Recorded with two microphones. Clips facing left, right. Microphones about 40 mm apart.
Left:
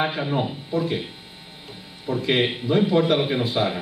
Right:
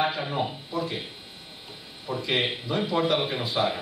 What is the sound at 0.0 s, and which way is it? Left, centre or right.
Speech, centre.